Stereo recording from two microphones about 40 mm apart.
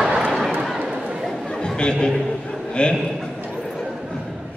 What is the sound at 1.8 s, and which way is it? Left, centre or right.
A man's voice, left.